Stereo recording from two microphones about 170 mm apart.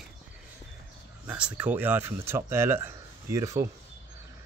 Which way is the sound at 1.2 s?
10° right (ahead or behind).